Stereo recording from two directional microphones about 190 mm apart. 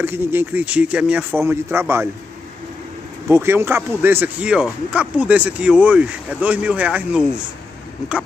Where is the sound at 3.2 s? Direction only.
15° right (ahead or behind).